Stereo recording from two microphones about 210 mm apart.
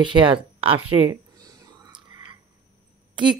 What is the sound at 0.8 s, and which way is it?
Speech, 90° right.